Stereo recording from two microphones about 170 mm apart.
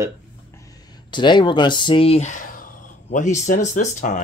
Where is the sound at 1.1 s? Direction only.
25° left (ahead or behind).